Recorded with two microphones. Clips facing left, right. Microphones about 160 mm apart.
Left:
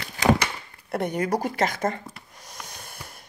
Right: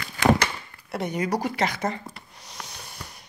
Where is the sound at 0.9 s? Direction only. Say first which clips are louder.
Left 2 dB; 55° left (ahead or behind).